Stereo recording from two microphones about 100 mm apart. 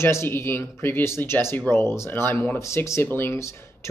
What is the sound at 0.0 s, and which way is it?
Speech, 25° left (ahead or behind).